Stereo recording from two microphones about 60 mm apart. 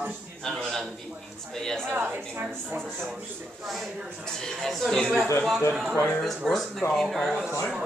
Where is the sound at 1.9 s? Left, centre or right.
Right.